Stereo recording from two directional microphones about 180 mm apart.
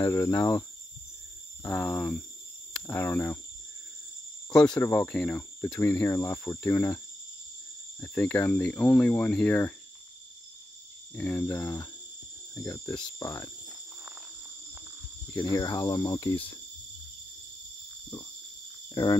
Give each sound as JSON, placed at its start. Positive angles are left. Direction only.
{"t": 0.0, "sound": "speech", "side_deg": 15}
{"t": 4.7, "sound": "speech", "side_deg": 15}
{"t": 8.0, "sound": "speech", "side_deg": 10}
{"t": 11.1, "sound": "speech", "side_deg": 10}
{"t": 15.4, "sound": "speech", "side_deg": 20}